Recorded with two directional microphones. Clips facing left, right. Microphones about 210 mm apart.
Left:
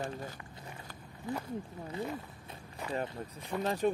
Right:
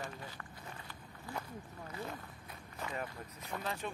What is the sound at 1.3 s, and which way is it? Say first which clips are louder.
Speech: left 7 dB; 20° left (ahead or behind).